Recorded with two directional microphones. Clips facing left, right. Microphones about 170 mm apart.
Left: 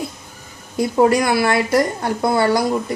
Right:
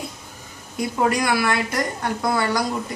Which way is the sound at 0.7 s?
30° left (ahead or behind).